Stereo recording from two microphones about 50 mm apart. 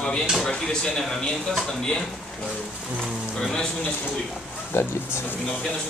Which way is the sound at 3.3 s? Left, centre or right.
Centre.